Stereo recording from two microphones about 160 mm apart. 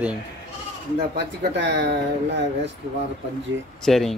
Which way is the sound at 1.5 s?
90° right.